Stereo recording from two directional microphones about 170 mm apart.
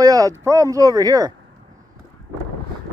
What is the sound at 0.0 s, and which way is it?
Speech, 20° right (ahead or behind).